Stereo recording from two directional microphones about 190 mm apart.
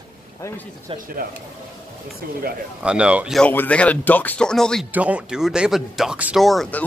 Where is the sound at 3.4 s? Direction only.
10° left (ahead or behind).